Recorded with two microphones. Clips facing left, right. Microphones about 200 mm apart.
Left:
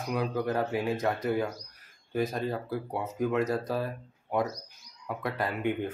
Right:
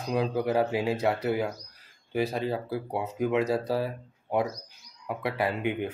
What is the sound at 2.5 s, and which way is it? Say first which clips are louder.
Speech: right 2 dB; 10° right (ahead or behind).